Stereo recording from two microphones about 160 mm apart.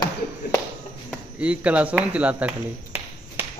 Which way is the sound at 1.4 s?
10° right (ahead or behind).